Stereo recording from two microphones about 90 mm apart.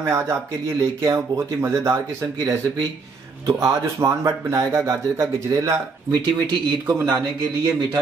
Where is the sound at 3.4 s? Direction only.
35° right (ahead or behind).